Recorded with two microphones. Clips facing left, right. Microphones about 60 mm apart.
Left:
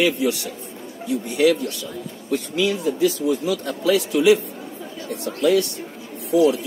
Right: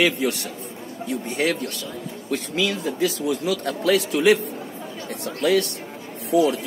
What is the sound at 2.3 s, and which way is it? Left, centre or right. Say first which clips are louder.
A man's voice: left 3 dB; right.